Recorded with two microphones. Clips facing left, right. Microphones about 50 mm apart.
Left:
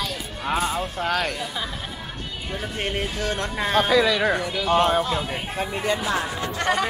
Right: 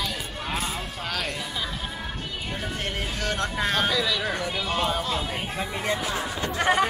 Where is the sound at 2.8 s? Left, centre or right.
Centre.